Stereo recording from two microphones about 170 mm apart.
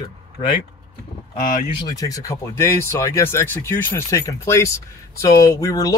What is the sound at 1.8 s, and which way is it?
Speech, 20° left (ahead or behind).